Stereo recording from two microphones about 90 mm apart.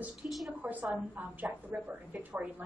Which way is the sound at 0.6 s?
20° right (ahead or behind).